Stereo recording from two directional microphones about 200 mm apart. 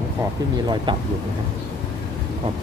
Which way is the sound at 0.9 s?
25° right (ahead or behind).